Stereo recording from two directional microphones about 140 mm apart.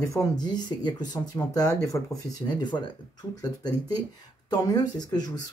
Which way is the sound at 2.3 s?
30° left (ahead or behind).